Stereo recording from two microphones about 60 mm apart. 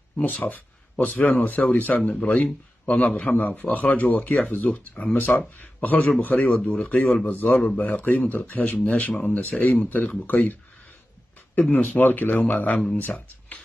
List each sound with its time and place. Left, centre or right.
0.2 s a man's voice: left
7.5 s a man's voice: centre
11.7 s a man's voice: left